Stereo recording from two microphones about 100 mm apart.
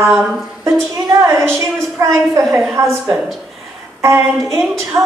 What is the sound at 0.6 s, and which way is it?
A woman's voice, 30° right (ahead or behind).